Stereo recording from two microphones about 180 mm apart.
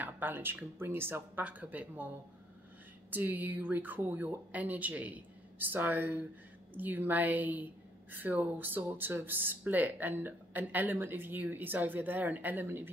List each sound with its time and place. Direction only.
0.0 s a woman's voice: 10° right (ahead or behind)